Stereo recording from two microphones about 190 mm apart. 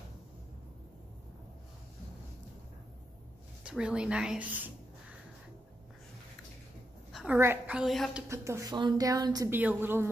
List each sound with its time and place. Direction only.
3.6 s a woman's voice: 5° right (ahead or behind)
7.1 s a sound: centre (ahead or behind)
7.3 s a woman's voice: 10° right (ahead or behind)
8.3 s a woman's voice: 15° right (ahead or behind)